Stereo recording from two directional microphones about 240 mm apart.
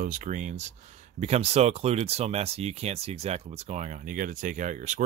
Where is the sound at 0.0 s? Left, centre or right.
Right.